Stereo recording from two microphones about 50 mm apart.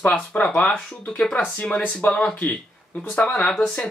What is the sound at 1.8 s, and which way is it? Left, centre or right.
Speech, left.